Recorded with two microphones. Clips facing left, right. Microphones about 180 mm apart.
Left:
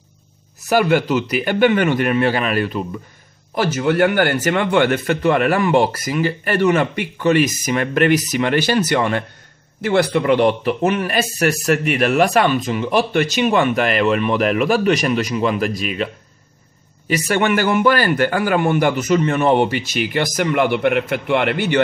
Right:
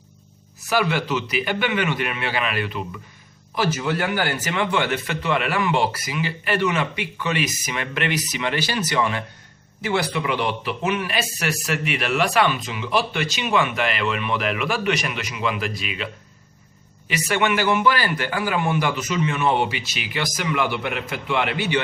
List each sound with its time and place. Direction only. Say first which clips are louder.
0.7 s a man's voice: left 6 dB; 50° left (ahead or behind)
3.5 s a man's voice: left 6 dB; 55° left (ahead or behind)
17.1 s a man's voice: left 5 dB; 45° left (ahead or behind)